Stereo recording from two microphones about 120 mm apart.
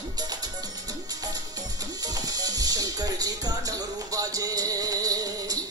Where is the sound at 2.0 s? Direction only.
30° right (ahead or behind).